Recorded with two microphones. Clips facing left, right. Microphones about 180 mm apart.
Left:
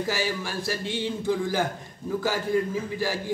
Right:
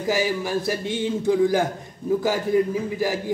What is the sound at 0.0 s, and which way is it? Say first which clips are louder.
A man's voice: right 5 dB; 15° right (ahead or behind).